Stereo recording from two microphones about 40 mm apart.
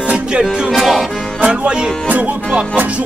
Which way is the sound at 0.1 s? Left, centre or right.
Right.